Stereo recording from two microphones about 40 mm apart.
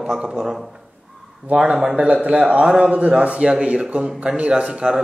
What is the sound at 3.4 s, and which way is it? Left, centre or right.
A man's voice, right.